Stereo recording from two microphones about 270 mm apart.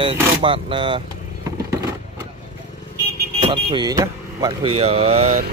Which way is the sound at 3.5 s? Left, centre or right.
Centre.